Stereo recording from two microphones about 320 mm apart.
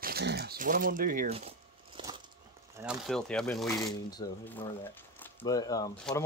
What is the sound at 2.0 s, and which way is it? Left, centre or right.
Bird flight, centre.